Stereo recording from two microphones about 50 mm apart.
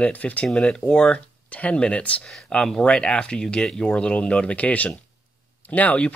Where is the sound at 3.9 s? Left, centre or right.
Left.